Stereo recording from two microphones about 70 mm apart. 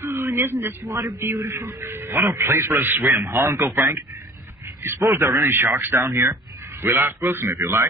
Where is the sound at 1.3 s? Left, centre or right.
Right.